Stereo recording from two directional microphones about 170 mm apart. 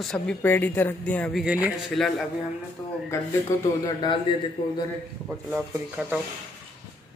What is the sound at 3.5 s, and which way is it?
Speech, 20° left (ahead or behind).